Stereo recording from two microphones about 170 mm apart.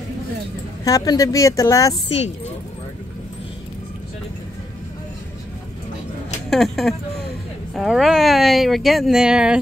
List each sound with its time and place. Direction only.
0.8 s speech: 20° left (ahead or behind)
2.0 s speech: 40° left (ahead or behind)
6.5 s speech: centre (ahead or behind)